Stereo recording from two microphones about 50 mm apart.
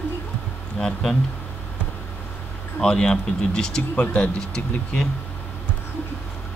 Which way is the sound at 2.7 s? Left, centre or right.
Centre.